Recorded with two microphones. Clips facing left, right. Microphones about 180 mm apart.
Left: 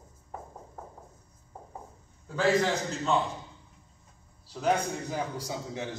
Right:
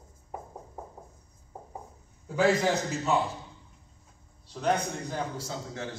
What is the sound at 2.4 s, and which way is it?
Speech, 5° right (ahead or behind).